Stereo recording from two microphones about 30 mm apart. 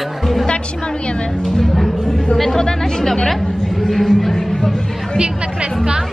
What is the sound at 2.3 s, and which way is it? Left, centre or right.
Speech, centre.